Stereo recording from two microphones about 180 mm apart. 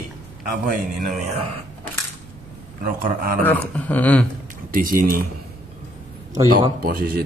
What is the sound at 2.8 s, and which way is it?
Speech, 50° right (ahead or behind).